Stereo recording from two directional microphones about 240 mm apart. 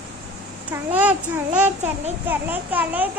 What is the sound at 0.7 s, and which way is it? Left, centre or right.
Speech, centre.